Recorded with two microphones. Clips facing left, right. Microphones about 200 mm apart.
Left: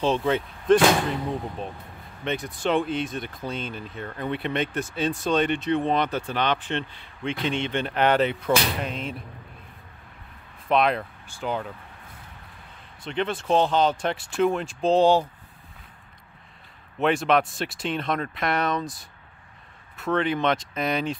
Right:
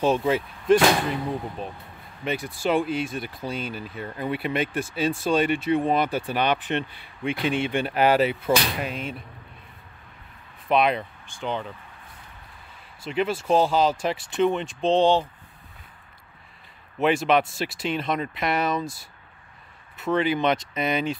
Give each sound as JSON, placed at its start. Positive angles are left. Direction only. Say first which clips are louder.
{"t": 0.0, "sound": "speech", "louder": "right 1 dB", "side_deg": -10}
{"t": 10.7, "sound": "speech", "louder": "even", "side_deg": 0}
{"t": 13.0, "sound": "speech", "louder": "right 2 dB", "side_deg": -5}
{"t": 17.0, "sound": "speech", "louder": "right 1 dB", "side_deg": -5}
{"t": 20.0, "sound": "speech", "louder": "right 1 dB", "side_deg": -5}